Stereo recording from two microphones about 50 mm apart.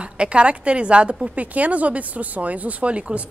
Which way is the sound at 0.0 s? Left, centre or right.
Right.